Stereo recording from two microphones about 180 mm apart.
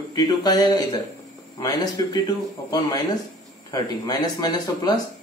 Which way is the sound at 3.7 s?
20° left (ahead or behind).